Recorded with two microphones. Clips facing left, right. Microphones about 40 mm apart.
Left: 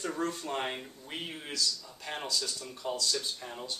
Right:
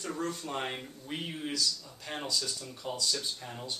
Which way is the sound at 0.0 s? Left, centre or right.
Centre.